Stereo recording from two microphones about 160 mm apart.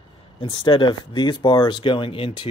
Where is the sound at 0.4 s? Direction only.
30° left (ahead or behind).